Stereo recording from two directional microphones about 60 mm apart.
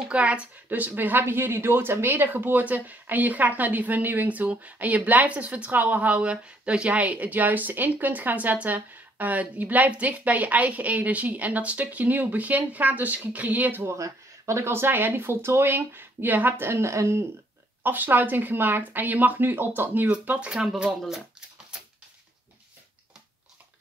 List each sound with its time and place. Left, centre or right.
0.1 s speech: right
0.7 s speech: right
13.8 s speech: right
14.7 s speech: right
17.8 s speech: right
20.1 s speech: centre
21.7 s a sound: centre